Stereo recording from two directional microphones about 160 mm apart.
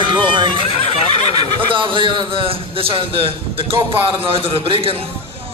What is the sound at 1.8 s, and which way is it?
A man's voice, 30° right (ahead or behind).